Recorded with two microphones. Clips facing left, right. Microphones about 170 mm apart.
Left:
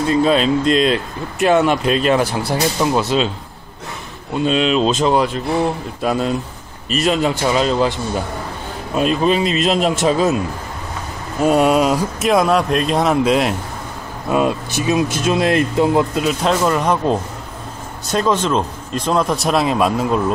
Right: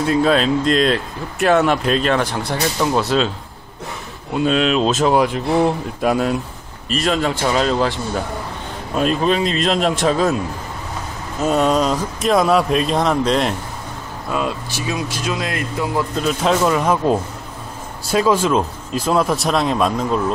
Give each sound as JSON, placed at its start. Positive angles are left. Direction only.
{"t": 0.1, "sound": "speech", "side_deg": 0}
{"t": 4.3, "sound": "speech", "side_deg": -5}
{"t": 6.9, "sound": "speech", "side_deg": 5}
{"t": 11.4, "sound": "speech", "side_deg": 10}
{"t": 14.3, "sound": "speech", "side_deg": 20}
{"t": 16.2, "sound": "speech", "side_deg": 0}